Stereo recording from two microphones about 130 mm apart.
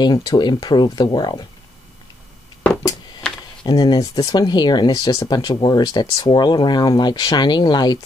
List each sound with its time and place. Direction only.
0.0 s speech: 35° left (ahead or behind)
3.6 s speech: 30° left (ahead or behind)